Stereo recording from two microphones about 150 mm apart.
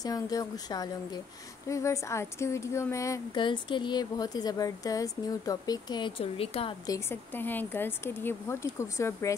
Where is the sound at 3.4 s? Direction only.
30° left (ahead or behind).